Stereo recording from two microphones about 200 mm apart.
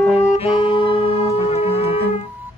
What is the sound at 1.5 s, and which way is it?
Music, 30° left (ahead or behind).